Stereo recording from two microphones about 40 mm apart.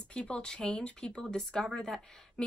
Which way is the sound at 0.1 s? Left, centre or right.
Left.